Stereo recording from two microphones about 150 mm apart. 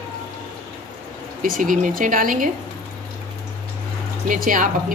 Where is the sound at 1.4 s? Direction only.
65° right (ahead or behind).